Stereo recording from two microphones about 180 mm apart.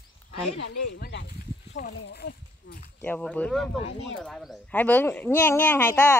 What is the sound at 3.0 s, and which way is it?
Speech, 10° left (ahead or behind).